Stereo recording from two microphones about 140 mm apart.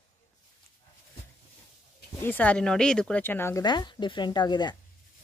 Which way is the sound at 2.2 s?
10° left (ahead or behind).